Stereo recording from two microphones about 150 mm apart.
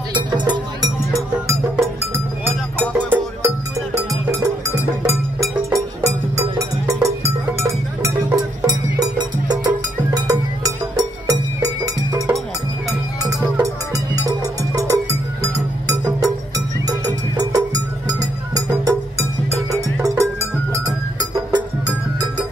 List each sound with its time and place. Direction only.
0.1 s music: 30° right (ahead or behind)
1.1 s music: centre (ahead or behind)
2.9 s music: 15° right (ahead or behind)
13.6 s music: 25° right (ahead or behind)